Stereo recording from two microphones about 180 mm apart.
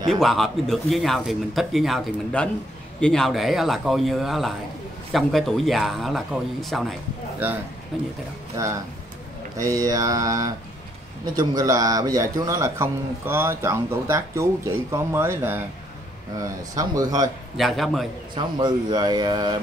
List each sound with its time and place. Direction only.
0.1 s a man's voice: centre (ahead or behind)
8.6 s a man's voice: 15° right (ahead or behind)
17.6 s a man's voice: centre (ahead or behind)
18.3 s speech: 25° right (ahead or behind)